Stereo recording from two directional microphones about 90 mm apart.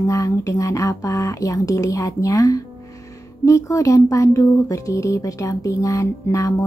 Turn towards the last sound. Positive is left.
turn(degrees=35)  # may be behind; listen again after turning